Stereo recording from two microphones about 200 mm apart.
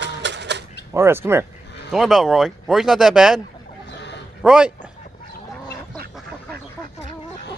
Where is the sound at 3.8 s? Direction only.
60° left (ahead or behind).